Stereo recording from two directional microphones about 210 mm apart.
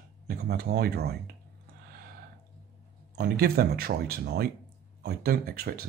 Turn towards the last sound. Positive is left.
turn(degrees=-45)  # may be behind; listen again after turning